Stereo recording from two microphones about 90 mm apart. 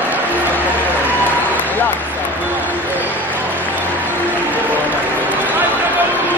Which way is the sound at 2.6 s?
20° right (ahead or behind).